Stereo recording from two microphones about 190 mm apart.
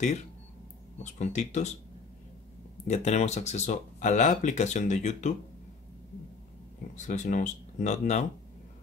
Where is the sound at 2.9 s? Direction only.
35° left (ahead or behind).